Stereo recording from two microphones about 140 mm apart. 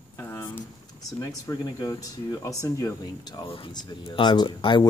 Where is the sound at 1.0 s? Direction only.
25° left (ahead or behind).